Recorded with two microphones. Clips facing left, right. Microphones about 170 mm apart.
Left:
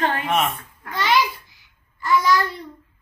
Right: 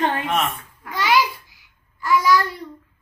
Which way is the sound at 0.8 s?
5° right (ahead or behind).